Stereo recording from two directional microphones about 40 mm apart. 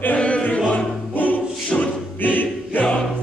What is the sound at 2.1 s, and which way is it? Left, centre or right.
Music, left.